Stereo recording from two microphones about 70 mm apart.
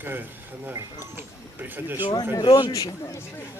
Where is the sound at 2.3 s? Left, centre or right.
Left.